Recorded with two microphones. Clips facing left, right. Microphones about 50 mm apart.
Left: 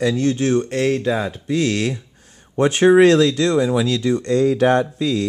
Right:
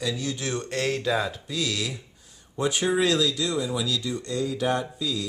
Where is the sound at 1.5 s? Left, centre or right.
Left.